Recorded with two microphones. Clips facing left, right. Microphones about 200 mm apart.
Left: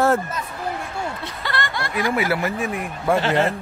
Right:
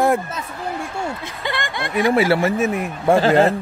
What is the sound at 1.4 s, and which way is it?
Speech, 20° right (ahead or behind).